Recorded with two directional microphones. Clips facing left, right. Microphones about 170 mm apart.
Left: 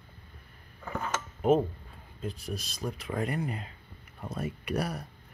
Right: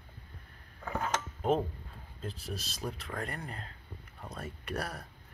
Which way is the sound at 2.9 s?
15° left (ahead or behind).